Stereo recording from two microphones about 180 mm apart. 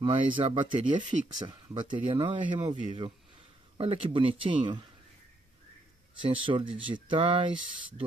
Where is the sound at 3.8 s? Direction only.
30° right (ahead or behind).